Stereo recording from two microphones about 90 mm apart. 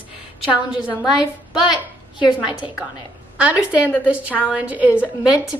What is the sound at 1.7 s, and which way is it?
Speech, 55° left (ahead or behind).